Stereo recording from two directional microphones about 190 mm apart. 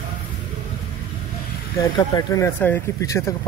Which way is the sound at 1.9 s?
20° left (ahead or behind).